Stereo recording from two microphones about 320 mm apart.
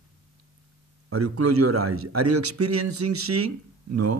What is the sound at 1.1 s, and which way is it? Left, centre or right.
A man's voice, right.